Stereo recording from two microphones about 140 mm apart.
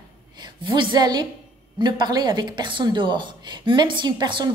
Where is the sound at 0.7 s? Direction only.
35° right (ahead or behind).